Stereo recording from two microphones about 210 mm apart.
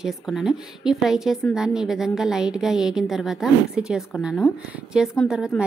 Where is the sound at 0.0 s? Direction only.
Centre (ahead or behind).